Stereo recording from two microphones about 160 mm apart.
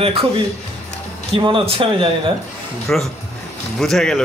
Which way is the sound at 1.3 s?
35° right (ahead or behind).